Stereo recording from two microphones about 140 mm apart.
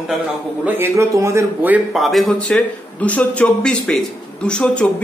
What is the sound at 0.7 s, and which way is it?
Speech, 20° right (ahead or behind).